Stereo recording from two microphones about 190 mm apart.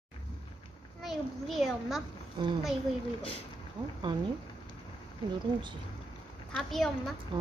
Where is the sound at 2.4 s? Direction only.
25° right (ahead or behind).